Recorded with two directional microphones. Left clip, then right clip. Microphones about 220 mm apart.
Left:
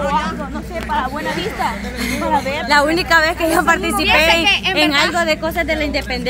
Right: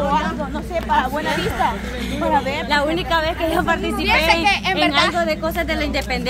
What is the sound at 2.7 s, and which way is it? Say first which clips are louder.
A woman's voice: left 6 dB; 45° left (ahead or behind).